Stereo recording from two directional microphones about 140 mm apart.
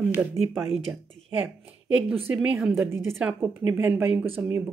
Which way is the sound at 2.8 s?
15° right (ahead or behind).